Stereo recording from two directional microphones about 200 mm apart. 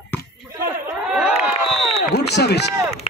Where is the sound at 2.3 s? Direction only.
55° left (ahead or behind).